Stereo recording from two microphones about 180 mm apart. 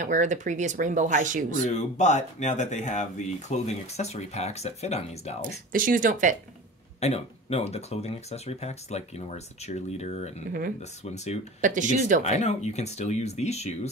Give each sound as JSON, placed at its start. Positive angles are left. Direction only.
{"t": 0.0, "sound": "speech", "side_deg": -45}
{"t": 1.6, "sound": "speech", "side_deg": 40}
{"t": 5.7, "sound": "speech", "side_deg": -50}
{"t": 7.0, "sound": "speech", "side_deg": 35}
{"t": 11.6, "sound": "speech", "side_deg": -45}
{"t": 12.2, "sound": "speech", "side_deg": 40}